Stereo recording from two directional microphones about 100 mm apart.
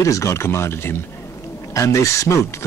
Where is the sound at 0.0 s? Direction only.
30° left (ahead or behind).